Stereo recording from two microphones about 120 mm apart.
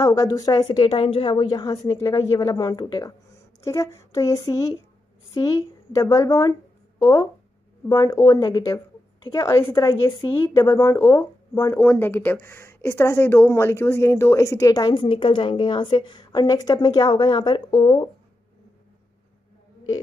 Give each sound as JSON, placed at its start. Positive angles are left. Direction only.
{"t": 0.0, "sound": "a woman's voice", "side_deg": 30}
{"t": 15.0, "sound": "a woman's voice", "side_deg": 50}